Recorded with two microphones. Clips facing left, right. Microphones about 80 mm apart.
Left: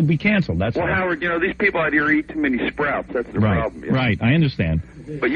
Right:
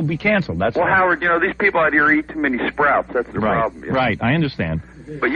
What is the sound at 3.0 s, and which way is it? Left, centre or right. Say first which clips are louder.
Speech: right 2 dB; right.